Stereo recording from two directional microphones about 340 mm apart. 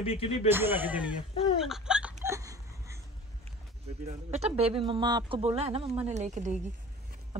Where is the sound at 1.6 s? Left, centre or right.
Centre.